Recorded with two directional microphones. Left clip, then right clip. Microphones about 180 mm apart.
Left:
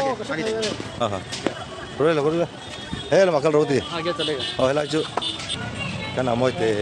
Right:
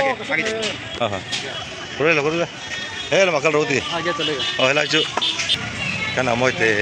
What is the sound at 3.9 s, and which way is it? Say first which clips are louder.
Speech: right 3 dB; 40° right (ahead or behind).